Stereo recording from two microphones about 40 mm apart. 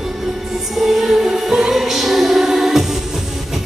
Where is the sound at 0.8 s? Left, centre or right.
Centre.